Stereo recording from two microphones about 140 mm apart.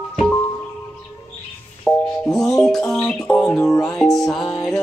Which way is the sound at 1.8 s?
5° left (ahead or behind).